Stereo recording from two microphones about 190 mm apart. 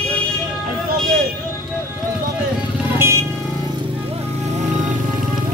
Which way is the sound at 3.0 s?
15° right (ahead or behind).